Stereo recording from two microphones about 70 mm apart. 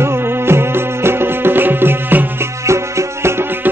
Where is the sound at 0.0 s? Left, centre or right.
Right.